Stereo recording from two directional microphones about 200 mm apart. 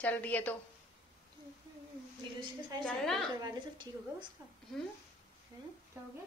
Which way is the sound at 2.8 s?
Centre (ahead or behind).